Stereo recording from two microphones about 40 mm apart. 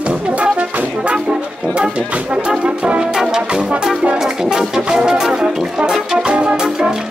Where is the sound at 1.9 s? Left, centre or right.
Right.